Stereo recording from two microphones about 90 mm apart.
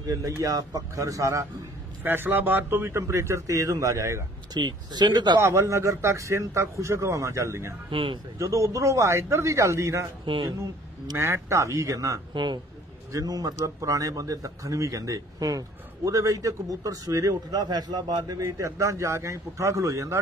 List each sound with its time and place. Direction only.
0.0 s speech: 40° right (ahead or behind)
2.0 s speech: 25° right (ahead or behind)
4.6 s speech: 50° right (ahead or behind)
5.4 s speech: 35° right (ahead or behind)
7.9 s speech: 75° right (ahead or behind)
8.4 s speech: 35° right (ahead or behind)
10.2 s speech: 75° right (ahead or behind)
11.1 s speech: 30° right (ahead or behind)